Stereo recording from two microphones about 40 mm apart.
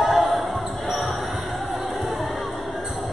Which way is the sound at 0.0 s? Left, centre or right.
Centre.